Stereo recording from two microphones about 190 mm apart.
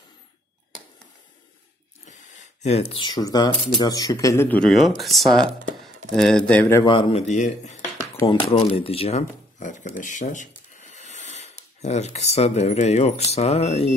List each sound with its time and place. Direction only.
2.0 s speech: 40° left (ahead or behind); by 6.9 s 15° left (ahead or behind)
6.9 s speech: 30° left (ahead or behind)